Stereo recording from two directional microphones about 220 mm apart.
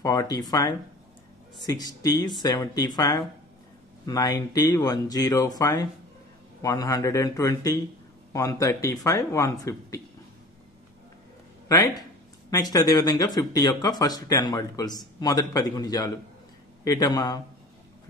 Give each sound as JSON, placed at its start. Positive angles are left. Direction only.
{"t": 0.0, "sound": "speech", "side_deg": 15}
{"t": 11.7, "sound": "speech", "side_deg": 15}